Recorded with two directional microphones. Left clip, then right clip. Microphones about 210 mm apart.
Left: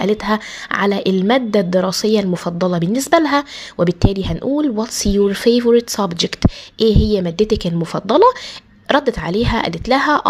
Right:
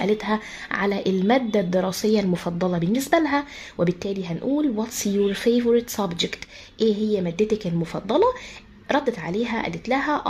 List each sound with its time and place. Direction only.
0.0 s a woman's voice: 15° left (ahead or behind)